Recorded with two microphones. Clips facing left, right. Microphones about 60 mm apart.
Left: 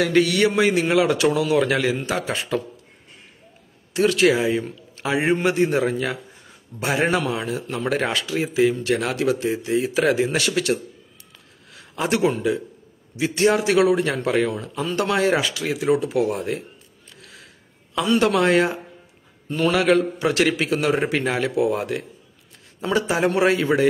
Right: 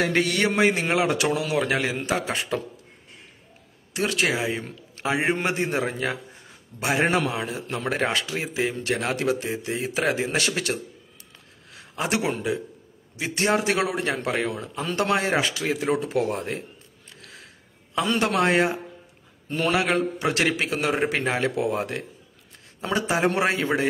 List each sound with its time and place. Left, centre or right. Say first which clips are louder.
0.0 s speech: left 4 dB; right
3.9 s a man's voice: left 7 dB; right
17.9 s speech: left 4 dB; right